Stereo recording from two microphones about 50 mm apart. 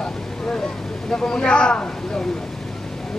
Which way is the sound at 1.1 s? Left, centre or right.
Centre.